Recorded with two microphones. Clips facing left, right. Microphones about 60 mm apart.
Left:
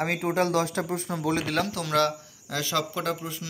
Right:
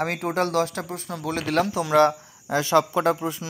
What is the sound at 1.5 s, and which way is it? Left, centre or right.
Speech, centre.